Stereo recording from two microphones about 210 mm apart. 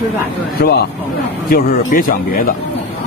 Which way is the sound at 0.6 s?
50° left (ahead or behind).